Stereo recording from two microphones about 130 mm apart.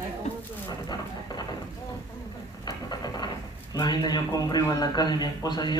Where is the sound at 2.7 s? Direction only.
30° left (ahead or behind).